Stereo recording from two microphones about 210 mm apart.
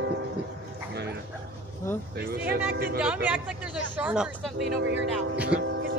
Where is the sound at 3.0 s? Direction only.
5° right (ahead or behind).